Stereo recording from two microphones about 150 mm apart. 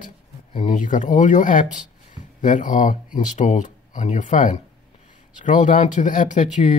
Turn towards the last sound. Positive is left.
turn(degrees=55)  # may be behind; listen again after turning